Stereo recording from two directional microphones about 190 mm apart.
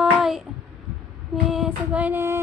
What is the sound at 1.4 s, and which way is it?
Female singing, 5° right (ahead or behind).